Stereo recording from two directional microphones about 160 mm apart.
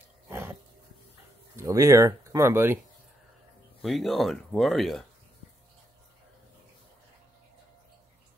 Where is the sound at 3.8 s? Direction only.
Centre (ahead or behind).